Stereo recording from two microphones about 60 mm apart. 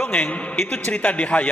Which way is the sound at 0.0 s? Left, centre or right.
Left.